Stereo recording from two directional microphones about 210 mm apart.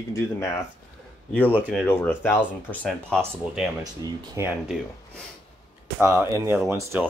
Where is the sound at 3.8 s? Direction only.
15° right (ahead or behind).